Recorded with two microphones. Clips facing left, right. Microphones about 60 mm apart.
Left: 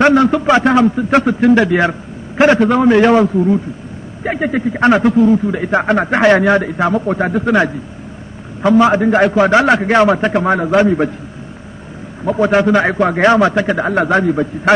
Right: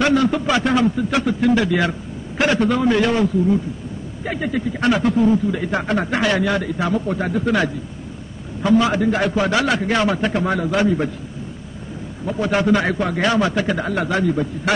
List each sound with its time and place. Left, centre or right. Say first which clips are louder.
0.0 s a man's voice: left 6 dB; left
1.2 s a man's voice: left 6 dB; left
4.2 s a man's voice: left 6 dB; left
12.3 s a man's voice: left 6 dB; left